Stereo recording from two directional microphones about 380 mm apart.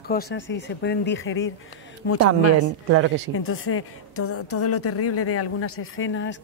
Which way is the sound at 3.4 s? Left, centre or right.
Left.